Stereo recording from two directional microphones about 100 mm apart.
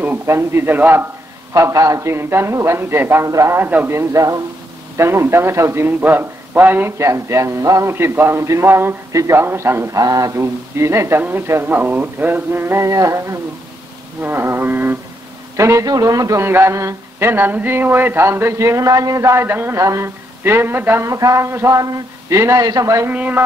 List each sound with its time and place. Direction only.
0.0 s speech: 25° right (ahead or behind)
1.5 s a man's voice: 35° right (ahead or behind)
23.0 s a man's voice: 15° right (ahead or behind)